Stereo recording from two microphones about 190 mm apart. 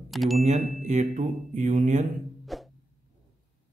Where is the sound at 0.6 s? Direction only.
Centre (ahead or behind).